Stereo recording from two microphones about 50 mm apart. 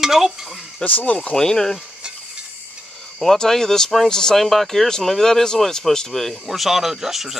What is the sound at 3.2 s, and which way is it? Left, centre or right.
Speech, centre.